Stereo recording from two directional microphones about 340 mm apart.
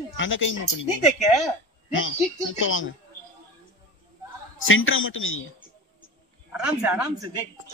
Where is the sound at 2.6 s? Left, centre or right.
Left.